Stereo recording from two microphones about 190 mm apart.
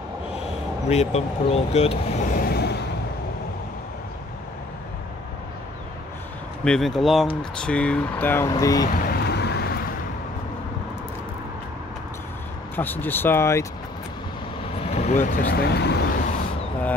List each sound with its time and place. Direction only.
0.8 s speech: 35° left (ahead or behind)
2.3 s vehicle: 55° left (ahead or behind)
6.6 s speech: 5° left (ahead or behind); by 8.8 s 20° left (ahead or behind)
8.8 s vehicle: 55° left (ahead or behind)
12.7 s speech: 10° left (ahead or behind)
14.9 s speech: 35° left (ahead or behind); by 16.2 s 60° left (ahead or behind)